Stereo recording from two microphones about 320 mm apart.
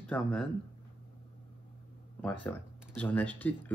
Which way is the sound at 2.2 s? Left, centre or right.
Centre.